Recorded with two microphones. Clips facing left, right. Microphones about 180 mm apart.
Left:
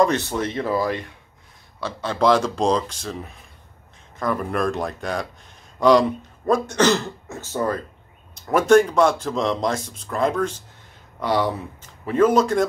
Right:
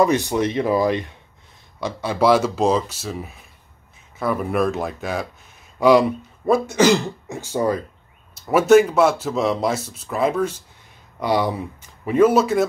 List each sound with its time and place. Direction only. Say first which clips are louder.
0.0 s speech: right 2 dB; 10° right (ahead or behind)